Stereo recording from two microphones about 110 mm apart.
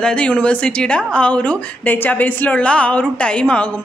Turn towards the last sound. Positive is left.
turn(degrees=10)  # may be behind; listen again after turning